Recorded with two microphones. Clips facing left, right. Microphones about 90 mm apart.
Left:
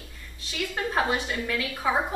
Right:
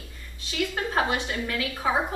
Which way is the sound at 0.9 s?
Centre (ahead or behind).